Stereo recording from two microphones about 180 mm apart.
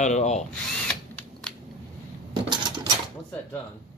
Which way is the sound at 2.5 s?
25° right (ahead or behind).